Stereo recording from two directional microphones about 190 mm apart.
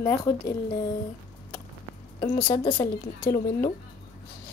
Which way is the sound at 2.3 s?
25° left (ahead or behind).